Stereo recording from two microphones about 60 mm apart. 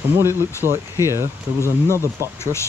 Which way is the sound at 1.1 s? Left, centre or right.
Right.